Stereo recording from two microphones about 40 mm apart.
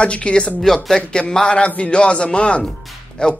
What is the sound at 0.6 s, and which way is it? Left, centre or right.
Speech, centre.